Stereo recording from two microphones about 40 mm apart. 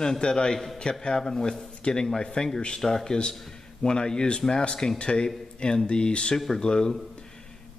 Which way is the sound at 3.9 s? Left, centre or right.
Left.